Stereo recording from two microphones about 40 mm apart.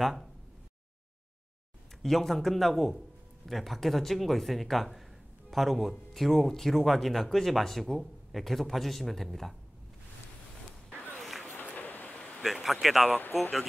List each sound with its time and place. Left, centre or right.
0.0 s speech: centre
2.0 s speech: centre
11.6 s a sound: left
12.8 s speech: centre